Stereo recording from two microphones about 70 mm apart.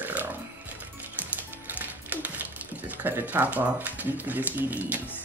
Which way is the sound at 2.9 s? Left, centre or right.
Right.